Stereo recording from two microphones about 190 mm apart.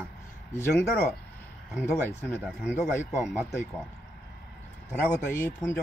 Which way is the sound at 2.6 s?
15° left (ahead or behind).